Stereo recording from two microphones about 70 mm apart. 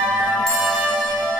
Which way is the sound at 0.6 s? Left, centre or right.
Centre.